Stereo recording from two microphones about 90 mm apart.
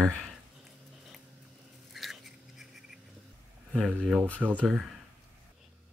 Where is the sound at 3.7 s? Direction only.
10° left (ahead or behind).